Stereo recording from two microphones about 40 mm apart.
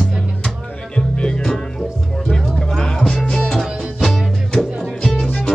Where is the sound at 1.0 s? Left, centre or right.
Left.